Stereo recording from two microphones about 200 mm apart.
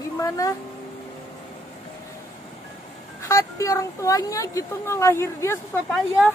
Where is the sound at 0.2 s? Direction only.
15° left (ahead or behind).